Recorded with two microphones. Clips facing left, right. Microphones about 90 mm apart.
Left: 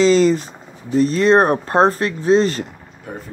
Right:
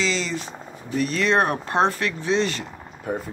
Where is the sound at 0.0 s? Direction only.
45° left (ahead or behind).